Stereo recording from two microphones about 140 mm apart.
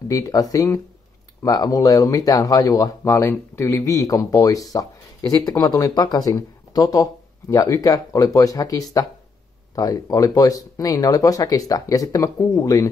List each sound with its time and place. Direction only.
0.1 s speech: 25° left (ahead or behind)